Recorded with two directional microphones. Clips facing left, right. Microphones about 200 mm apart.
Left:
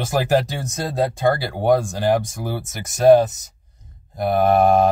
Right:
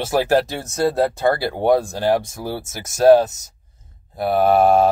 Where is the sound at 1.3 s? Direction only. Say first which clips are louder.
Right 1 dB; centre (ahead or behind).